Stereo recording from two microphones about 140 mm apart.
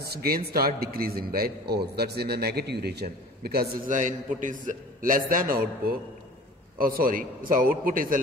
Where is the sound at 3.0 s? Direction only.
90° right.